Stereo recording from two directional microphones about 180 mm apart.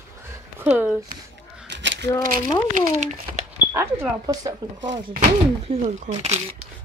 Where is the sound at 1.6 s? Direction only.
80° right.